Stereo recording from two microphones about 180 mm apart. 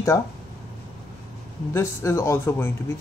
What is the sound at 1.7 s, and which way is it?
Speech, 15° left (ahead or behind).